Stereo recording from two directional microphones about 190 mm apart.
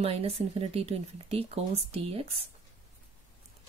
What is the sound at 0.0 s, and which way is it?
Speech, 30° right (ahead or behind).